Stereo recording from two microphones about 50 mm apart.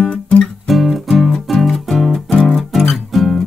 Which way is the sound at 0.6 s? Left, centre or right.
Centre.